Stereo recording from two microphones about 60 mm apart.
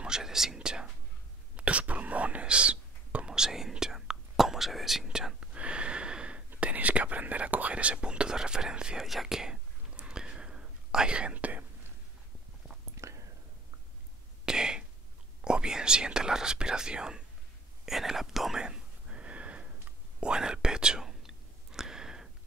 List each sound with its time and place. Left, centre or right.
0.0 s whispering: centre
3.3 s whispering: centre
5.0 s whispering: centre
12.9 s whispering: right
14.4 s throat clearing: centre
15.4 s speech: centre
17.8 s whispering: centre
18.6 s a sound: centre
20.2 s whispering: centre